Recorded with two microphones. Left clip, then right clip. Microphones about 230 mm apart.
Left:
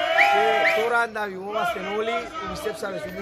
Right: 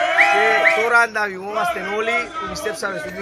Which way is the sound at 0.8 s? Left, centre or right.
Centre.